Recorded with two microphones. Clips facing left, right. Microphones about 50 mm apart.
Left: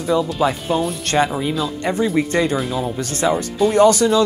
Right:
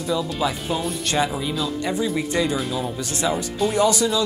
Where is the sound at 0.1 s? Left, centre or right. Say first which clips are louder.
Left 6 dB; left.